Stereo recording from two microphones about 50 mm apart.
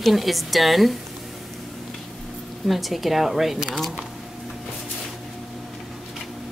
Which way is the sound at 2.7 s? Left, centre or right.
Centre.